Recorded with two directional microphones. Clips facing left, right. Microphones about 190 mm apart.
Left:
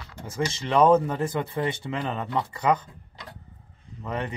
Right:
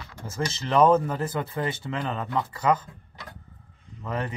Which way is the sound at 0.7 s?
5° right (ahead or behind).